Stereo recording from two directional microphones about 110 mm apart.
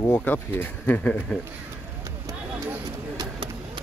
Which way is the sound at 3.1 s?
45° right (ahead or behind).